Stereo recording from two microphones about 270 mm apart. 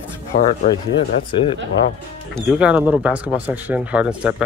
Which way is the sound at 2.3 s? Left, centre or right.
Centre.